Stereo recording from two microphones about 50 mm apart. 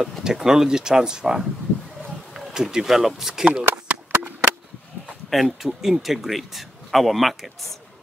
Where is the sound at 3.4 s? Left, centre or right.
Right.